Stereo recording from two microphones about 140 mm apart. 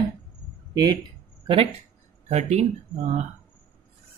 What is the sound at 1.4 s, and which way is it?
Speech, 40° right (ahead or behind).